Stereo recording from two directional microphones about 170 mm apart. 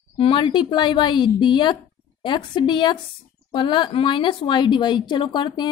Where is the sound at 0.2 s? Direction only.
30° left (ahead or behind).